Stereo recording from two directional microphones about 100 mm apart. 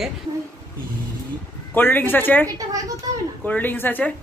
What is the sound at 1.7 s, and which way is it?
Speech, 20° left (ahead or behind).